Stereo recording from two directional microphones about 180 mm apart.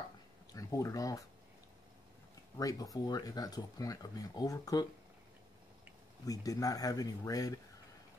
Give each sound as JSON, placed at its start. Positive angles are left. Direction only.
{"t": 0.5, "sound": "speech", "side_deg": 20}
{"t": 2.5, "sound": "speech", "side_deg": 20}
{"t": 6.2, "sound": "speech", "side_deg": 20}